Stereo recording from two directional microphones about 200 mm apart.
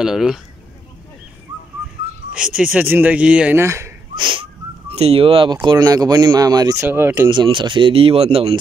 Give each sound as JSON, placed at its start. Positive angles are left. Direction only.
{"t": 0.0, "sound": "speech", "side_deg": -5}
{"t": 2.3, "sound": "speech", "side_deg": -5}